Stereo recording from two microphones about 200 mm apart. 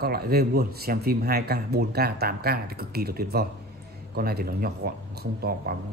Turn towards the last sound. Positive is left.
turn(degrees=-50)  # may be behind; listen again after turning